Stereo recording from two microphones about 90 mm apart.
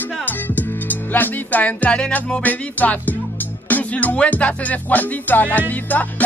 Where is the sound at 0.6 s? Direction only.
20° left (ahead or behind).